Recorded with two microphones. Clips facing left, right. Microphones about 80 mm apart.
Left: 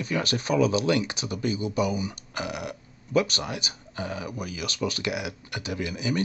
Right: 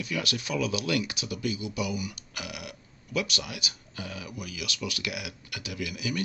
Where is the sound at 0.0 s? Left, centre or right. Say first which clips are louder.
Left 4 dB; left.